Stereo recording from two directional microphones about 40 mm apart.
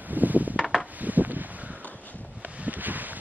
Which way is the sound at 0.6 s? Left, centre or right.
Centre.